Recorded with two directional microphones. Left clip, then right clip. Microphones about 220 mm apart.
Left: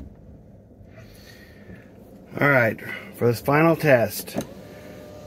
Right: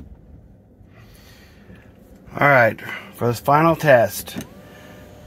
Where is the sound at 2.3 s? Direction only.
35° right (ahead or behind).